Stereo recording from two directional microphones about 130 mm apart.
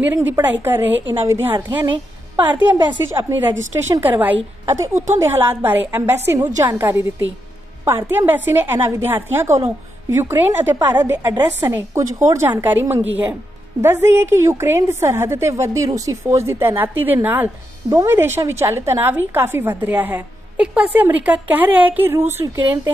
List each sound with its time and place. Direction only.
0.1 s a woman's voice: 15° right (ahead or behind)
2.5 s a woman's voice: 35° right (ahead or behind)
3.0 s a woman's voice: 20° right (ahead or behind)